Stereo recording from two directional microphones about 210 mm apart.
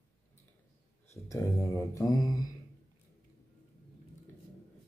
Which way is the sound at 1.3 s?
15° left (ahead or behind).